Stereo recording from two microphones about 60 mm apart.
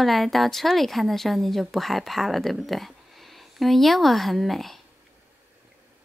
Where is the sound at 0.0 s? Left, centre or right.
Centre.